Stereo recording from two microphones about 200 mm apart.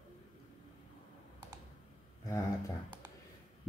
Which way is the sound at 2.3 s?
15° left (ahead or behind).